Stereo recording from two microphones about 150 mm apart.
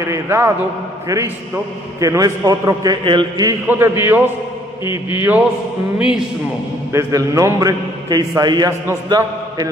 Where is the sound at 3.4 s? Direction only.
15° right (ahead or behind).